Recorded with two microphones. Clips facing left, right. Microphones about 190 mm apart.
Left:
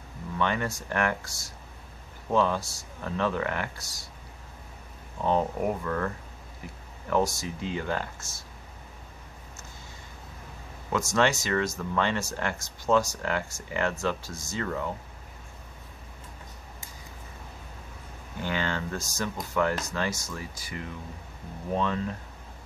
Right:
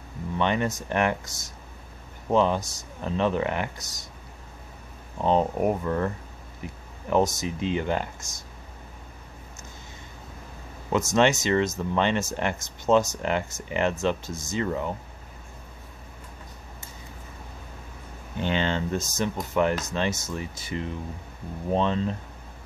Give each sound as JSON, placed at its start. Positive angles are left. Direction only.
{"t": 0.4, "sound": "speech", "side_deg": -20}
{"t": 5.2, "sound": "speech", "side_deg": -20}
{"t": 11.1, "sound": "speech", "side_deg": -20}
{"t": 18.4, "sound": "speech", "side_deg": -25}